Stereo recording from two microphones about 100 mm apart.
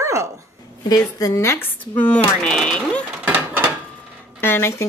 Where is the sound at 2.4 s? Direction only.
10° left (ahead or behind).